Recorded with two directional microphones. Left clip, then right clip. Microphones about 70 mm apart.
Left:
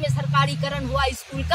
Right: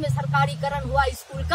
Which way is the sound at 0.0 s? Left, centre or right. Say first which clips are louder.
Left 1 dB; right.